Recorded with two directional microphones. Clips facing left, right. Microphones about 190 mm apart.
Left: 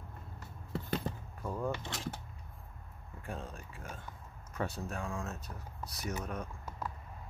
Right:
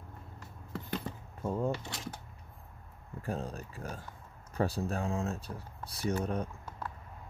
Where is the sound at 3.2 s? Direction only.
40° right (ahead or behind).